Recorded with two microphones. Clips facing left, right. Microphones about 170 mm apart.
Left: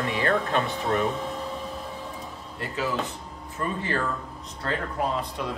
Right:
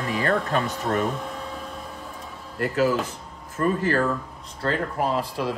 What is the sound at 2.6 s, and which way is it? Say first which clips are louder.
Speech: right 9 dB; 65° right (ahead or behind).